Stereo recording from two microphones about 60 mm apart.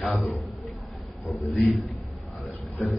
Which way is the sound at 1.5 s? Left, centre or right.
Centre.